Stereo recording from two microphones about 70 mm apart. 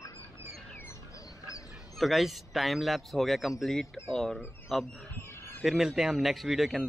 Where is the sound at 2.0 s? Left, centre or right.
Centre.